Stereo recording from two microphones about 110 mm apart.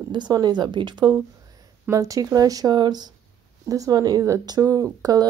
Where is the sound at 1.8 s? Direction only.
30° right (ahead or behind).